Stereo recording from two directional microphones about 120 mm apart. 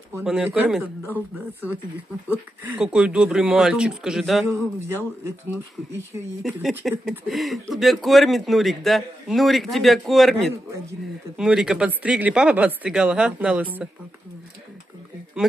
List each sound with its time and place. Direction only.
0.2 s speech: 5° right (ahead or behind)
1.0 s speech: 15° right (ahead or behind)
4.5 s a man's voice: 25° right (ahead or behind)
6.8 s speech: centre (ahead or behind)
11.3 s speech: 5° right (ahead or behind)